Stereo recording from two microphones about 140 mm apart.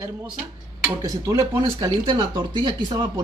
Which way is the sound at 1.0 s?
20° right (ahead or behind).